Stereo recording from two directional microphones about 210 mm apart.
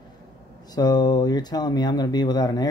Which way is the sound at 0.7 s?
20° left (ahead or behind).